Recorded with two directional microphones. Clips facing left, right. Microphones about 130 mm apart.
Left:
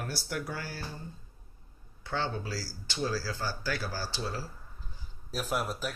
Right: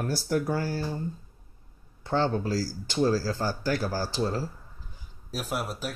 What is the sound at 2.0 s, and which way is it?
Speech, 40° right (ahead or behind).